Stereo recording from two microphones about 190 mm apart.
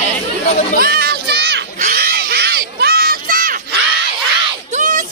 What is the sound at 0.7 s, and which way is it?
Children playing, 55° right (ahead or behind).